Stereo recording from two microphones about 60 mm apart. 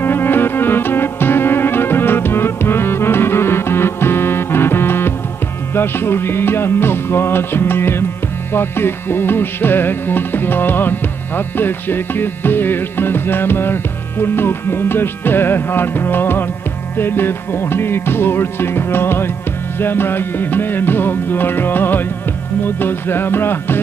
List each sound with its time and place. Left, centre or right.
0.0 s music: left